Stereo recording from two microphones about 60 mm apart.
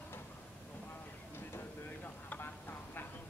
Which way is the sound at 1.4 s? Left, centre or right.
Left.